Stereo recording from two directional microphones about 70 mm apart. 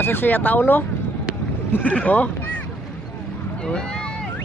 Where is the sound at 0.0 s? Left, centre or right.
Left.